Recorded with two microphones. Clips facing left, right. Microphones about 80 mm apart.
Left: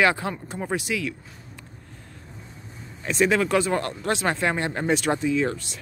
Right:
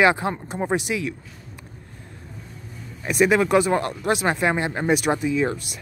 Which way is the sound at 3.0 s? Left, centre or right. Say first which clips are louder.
Right 3 dB; centre.